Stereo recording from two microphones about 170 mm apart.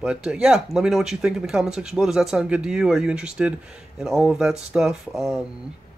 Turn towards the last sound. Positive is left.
turn(degrees=0)  # may be behind; listen again after turning